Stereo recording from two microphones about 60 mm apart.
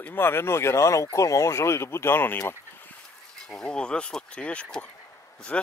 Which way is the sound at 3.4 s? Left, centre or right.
Centre.